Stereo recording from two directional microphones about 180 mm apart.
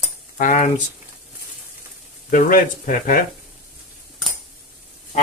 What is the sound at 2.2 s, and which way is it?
Speech, 45° left (ahead or behind).